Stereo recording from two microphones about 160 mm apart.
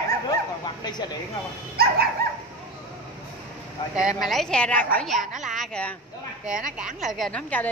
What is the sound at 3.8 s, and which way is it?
Speech, 30° left (ahead or behind).